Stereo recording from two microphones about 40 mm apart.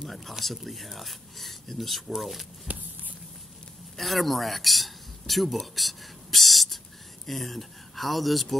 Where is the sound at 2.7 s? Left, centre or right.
Right.